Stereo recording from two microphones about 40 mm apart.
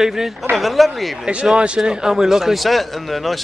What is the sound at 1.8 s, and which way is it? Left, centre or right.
A man's voice, centre.